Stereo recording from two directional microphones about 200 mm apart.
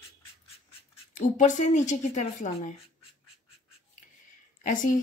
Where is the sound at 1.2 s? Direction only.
35° left (ahead or behind).